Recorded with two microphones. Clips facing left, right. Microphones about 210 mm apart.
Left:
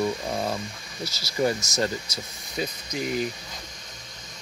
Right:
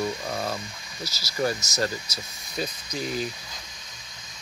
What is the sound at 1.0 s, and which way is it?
Speech, 55° left (ahead or behind).